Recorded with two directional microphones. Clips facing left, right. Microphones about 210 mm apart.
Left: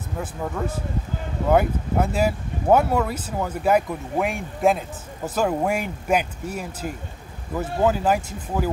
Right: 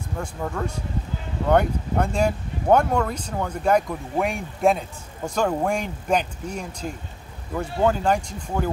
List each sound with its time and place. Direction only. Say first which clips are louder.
0.2 s speech: left 1 dB; 5° left (ahead or behind)